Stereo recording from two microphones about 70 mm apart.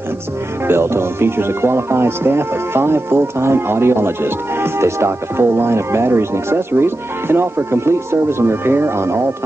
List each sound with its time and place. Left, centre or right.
0.7 s speech: right